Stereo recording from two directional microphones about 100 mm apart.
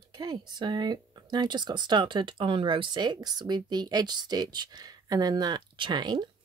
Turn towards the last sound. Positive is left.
turn(degrees=-50)  # may be behind; listen again after turning